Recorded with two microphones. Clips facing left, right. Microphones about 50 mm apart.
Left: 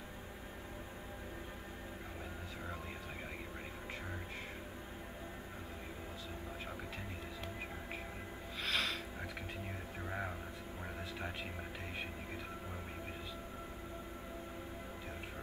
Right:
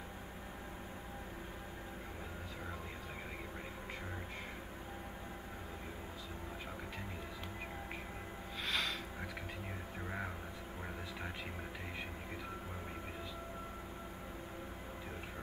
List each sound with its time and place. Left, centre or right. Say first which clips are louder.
8.6 s music: left 1 dB; centre